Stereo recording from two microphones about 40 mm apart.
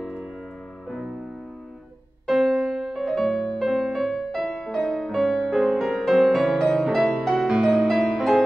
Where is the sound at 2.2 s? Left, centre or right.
Centre.